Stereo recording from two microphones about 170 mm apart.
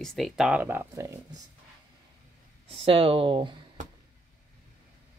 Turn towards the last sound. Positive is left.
turn(degrees=-30)  # may be behind; listen again after turning